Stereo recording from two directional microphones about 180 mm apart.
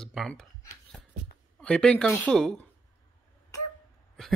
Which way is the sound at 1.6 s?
5° left (ahead or behind).